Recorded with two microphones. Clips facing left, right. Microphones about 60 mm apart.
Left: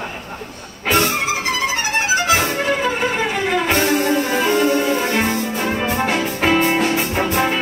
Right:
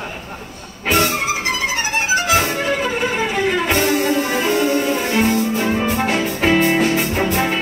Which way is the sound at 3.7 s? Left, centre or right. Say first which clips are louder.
Even; centre.